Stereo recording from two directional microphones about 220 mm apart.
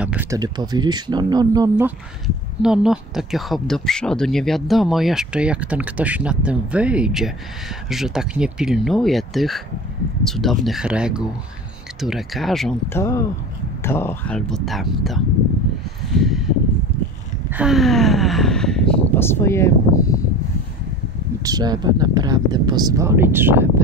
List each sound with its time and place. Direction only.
0.0 s speech: 5° right (ahead or behind)
2.2 s speech: 5° right (ahead or behind)
17.5 s a sound: 5° right (ahead or behind); by 20.2 s 15° left (ahead or behind)
21.5 s speech: 20° right (ahead or behind)